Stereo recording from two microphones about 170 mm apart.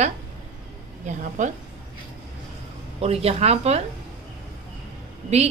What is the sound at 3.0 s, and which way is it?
Speech, 35° right (ahead or behind).